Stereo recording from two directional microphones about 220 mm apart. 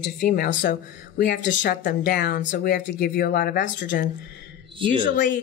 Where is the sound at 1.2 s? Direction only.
55° left (ahead or behind).